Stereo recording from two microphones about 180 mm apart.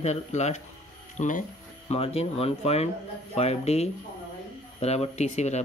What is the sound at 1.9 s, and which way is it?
Speech, 35° left (ahead or behind).